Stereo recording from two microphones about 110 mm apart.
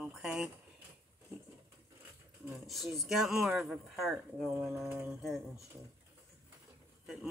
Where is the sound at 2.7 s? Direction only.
Centre (ahead or behind).